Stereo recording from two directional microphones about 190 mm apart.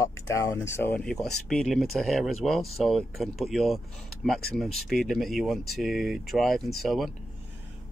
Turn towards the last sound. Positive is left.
turn(degrees=0)  # may be behind; listen again after turning